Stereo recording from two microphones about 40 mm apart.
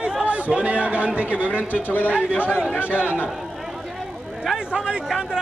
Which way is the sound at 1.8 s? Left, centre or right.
Left.